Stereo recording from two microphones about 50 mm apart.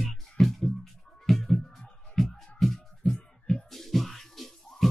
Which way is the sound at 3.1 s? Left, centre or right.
Centre.